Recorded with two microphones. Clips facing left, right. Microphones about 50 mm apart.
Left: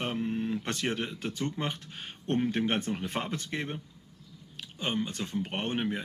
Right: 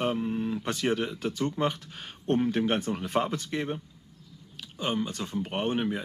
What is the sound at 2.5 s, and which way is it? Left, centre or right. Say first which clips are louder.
Speech: right 2 dB; left.